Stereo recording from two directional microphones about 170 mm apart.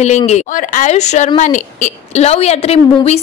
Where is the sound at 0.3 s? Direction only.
50° left (ahead or behind).